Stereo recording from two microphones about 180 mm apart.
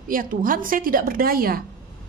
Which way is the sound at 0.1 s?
50° right (ahead or behind).